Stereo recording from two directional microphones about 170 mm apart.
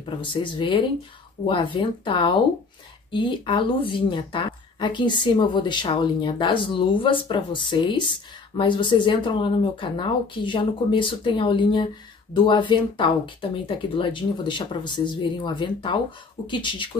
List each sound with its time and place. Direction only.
0.0 s speech: 30° left (ahead or behind)